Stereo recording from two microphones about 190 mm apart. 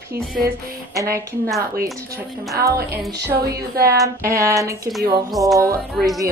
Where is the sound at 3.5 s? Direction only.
55° right (ahead or behind).